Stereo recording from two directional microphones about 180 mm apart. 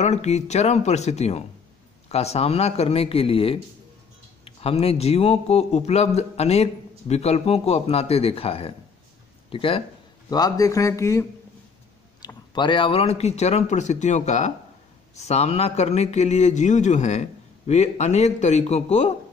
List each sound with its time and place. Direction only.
0.0 s speech: 40° left (ahead or behind)